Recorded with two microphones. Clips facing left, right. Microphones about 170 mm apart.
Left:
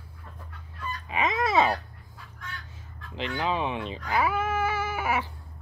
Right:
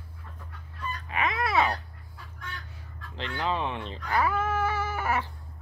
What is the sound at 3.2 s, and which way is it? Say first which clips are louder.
Speech: left 2 dB; 10° left (ahead or behind).